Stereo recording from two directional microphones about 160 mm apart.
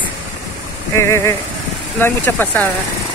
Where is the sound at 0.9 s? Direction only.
15° left (ahead or behind).